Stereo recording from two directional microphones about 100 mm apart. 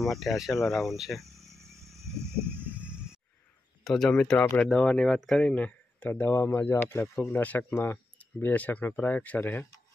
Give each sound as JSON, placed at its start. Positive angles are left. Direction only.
{"t": 0.0, "sound": "speech", "side_deg": 0}
{"t": 2.0, "sound": "a sound", "side_deg": -30}
{"t": 3.8, "sound": "speech", "side_deg": 5}
{"t": 5.5, "sound": "speech", "side_deg": 15}